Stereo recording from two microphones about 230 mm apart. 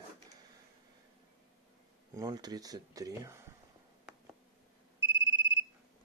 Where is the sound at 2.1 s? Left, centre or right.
Centre.